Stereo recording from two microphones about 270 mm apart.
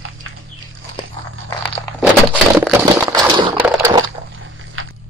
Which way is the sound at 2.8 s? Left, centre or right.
Centre.